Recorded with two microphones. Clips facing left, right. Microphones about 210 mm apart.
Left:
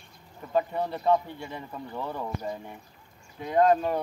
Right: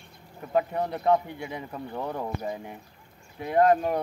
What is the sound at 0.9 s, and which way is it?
Speech, 15° right (ahead or behind).